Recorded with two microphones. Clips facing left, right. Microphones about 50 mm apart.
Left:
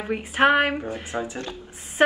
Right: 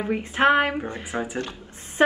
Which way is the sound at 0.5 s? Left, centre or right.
Left.